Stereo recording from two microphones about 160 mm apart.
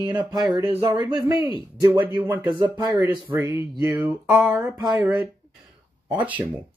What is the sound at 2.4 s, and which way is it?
Speech, 25° right (ahead or behind).